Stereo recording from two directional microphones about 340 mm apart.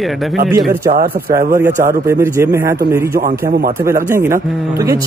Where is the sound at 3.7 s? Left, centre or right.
Centre.